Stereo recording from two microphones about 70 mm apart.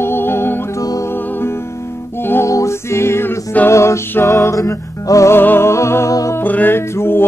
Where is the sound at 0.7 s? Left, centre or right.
Left.